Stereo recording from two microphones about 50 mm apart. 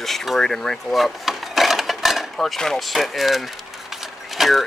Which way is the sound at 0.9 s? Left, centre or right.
Centre.